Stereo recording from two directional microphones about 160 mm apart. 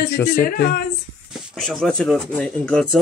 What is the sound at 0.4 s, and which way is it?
Speech, 65° left (ahead or behind).